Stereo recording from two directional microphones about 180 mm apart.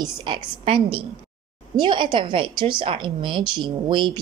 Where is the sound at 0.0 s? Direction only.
30° right (ahead or behind).